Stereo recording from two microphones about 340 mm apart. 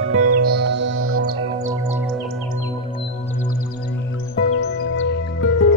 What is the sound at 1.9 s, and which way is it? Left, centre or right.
Music, centre.